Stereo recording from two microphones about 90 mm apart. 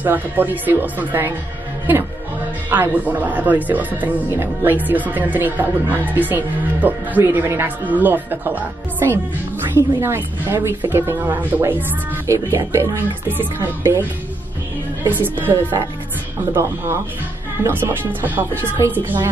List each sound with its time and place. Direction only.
0.0 s speech: 20° right (ahead or behind)
9.8 s speech: 30° right (ahead or behind)
12.3 s speech: 30° right (ahead or behind)
15.0 s speech: 20° right (ahead or behind)